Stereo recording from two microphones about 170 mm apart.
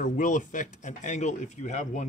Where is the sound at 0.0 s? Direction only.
50° left (ahead or behind).